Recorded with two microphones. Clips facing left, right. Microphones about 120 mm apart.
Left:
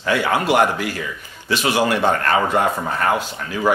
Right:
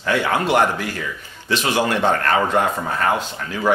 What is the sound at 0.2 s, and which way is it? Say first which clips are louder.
A man's voice: left 1 dB; 10° left (ahead or behind).